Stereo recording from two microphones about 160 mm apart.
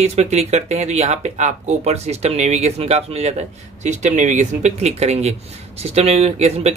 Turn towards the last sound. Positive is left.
turn(degrees=-40)  # may be behind; listen again after turning